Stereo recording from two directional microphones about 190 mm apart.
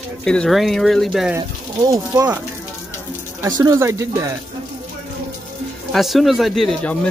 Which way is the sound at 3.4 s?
20° right (ahead or behind).